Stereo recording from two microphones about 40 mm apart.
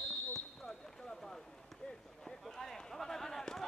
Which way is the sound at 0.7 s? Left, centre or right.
Centre.